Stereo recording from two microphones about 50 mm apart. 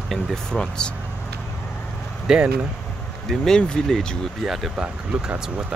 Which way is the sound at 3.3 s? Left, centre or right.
Centre.